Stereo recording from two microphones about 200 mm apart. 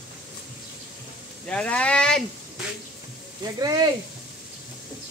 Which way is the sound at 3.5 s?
20° right (ahead or behind).